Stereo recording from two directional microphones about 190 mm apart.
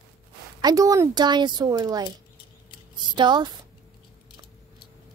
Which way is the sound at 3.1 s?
25° right (ahead or behind).